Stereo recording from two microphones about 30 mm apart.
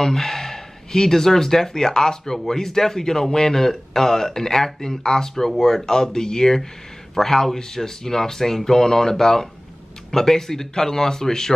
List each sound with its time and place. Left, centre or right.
0.0 s speech: centre